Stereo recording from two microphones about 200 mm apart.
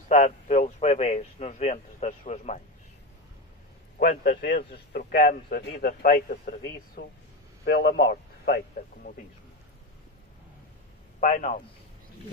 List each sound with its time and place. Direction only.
0.1 s speech: 35° left (ahead or behind)
4.0 s a man's voice: 50° left (ahead or behind)
11.1 s a man's voice: 40° left (ahead or behind)